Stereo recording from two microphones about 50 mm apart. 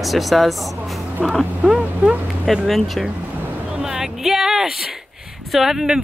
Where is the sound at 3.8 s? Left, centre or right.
Centre.